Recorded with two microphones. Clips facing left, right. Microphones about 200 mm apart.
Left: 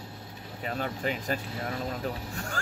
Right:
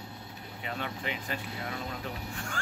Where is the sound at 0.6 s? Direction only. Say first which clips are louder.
Left 5 dB; 40° left (ahead or behind).